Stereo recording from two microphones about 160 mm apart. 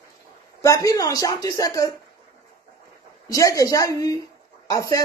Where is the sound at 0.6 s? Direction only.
20° left (ahead or behind).